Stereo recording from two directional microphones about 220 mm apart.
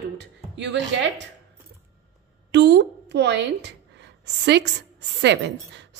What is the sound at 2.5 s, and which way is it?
A woman's voice, 50° right (ahead or behind).